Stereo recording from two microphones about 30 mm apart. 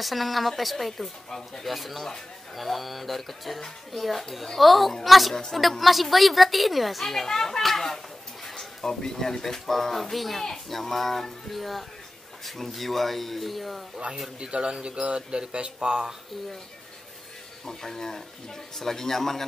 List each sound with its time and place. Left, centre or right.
0.0 s a woman's voice: centre
14.4 s speech: right
17.6 s speech: centre